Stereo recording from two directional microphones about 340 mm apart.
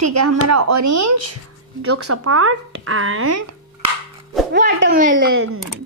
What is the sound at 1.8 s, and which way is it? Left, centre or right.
Speech, right.